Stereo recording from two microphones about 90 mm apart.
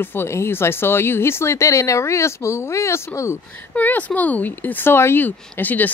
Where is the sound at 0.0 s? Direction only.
25° left (ahead or behind).